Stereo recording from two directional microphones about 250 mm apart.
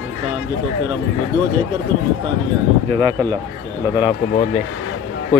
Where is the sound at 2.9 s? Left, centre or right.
Centre.